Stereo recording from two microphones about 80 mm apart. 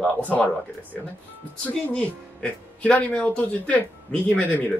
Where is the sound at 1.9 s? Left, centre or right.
Centre.